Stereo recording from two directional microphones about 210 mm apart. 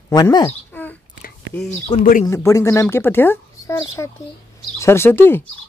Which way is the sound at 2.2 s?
15° left (ahead or behind).